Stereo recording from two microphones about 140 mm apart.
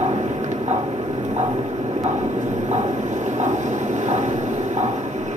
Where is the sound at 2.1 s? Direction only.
55° right (ahead or behind).